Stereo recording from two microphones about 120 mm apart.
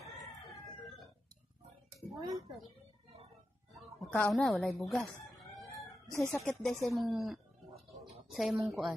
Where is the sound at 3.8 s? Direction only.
Centre (ahead or behind).